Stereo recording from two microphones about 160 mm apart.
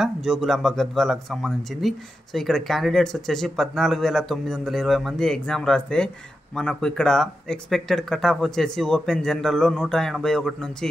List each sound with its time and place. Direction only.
0.0 s speech: centre (ahead or behind)